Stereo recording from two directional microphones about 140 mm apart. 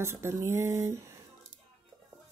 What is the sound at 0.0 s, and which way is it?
Speech, 20° right (ahead or behind).